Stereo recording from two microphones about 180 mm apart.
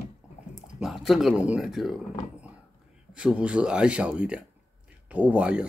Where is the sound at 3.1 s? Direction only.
5° right (ahead or behind).